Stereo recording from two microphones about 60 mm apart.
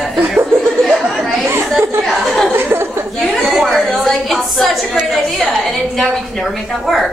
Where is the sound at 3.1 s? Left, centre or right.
Centre.